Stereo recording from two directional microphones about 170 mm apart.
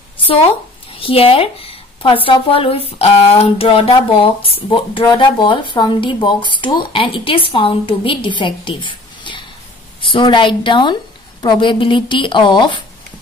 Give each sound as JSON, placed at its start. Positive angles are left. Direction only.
{"t": 0.9, "sound": "a woman's voice", "side_deg": 35}